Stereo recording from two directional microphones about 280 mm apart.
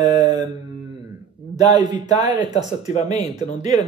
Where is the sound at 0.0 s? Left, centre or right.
Centre.